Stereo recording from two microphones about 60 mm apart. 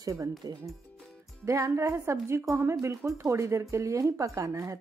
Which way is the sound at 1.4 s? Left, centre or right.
Right.